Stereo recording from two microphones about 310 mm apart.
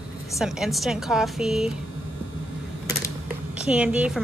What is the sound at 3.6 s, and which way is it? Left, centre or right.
Speech, centre.